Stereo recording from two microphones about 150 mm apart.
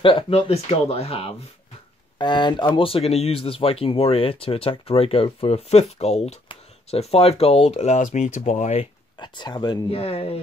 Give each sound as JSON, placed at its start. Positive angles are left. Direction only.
{"t": 0.0, "sound": "speech", "side_deg": 40}
{"t": 2.1, "sound": "speech", "side_deg": 30}
{"t": 9.2, "sound": "speech", "side_deg": 30}
{"t": 9.8, "sound": "speech", "side_deg": 40}